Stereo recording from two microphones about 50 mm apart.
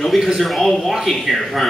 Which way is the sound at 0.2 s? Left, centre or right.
Centre.